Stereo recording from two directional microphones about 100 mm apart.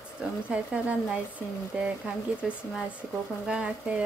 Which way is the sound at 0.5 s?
10° right (ahead or behind).